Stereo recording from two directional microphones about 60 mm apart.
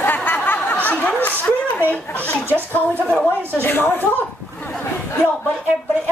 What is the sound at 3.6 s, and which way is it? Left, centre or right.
Speech, left.